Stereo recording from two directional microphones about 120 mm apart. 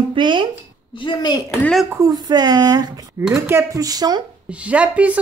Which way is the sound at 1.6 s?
5° left (ahead or behind).